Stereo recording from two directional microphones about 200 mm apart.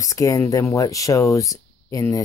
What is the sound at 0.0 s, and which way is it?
Speech, 15° left (ahead or behind).